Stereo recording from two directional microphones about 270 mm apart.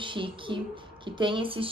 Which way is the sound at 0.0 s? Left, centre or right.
Centre.